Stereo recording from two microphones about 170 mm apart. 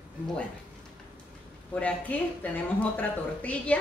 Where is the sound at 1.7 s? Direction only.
10° left (ahead or behind).